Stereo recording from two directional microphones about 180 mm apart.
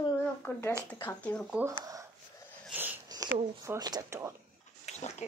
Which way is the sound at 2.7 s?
10° right (ahead or behind).